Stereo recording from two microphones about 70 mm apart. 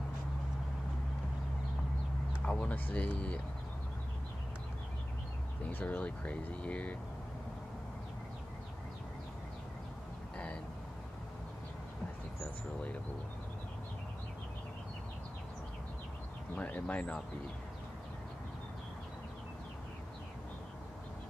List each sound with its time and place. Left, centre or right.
2.4 s speech: centre
5.7 s speech: left
16.5 s speech: centre